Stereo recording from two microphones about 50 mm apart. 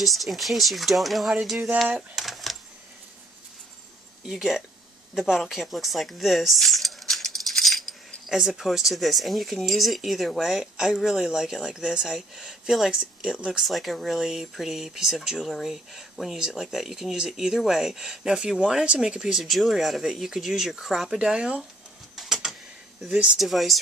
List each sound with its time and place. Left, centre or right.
0.0 s speech: centre
4.3 s speech: centre
12.9 s speech: centre
13.6 s speech: centre
19.4 s speech: centre
21.2 s speech: centre
22.1 s printer: centre
23.0 s speech: centre
23.3 s speech: centre